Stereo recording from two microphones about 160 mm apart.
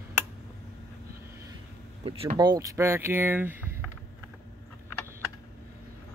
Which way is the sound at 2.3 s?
25° right (ahead or behind).